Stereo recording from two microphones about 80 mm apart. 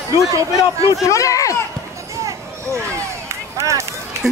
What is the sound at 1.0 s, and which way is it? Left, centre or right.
Speech, left.